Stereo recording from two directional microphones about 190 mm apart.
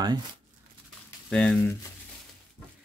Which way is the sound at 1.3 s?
5° left (ahead or behind).